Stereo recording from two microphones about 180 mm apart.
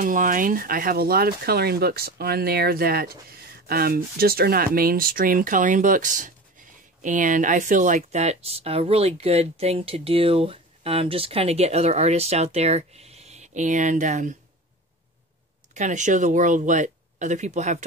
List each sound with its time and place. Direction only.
0.0 s speech: 50° right (ahead or behind)
15.7 s speech: 40° right (ahead or behind)